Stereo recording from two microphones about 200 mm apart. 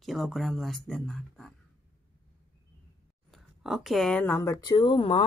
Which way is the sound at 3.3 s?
Centre (ahead or behind).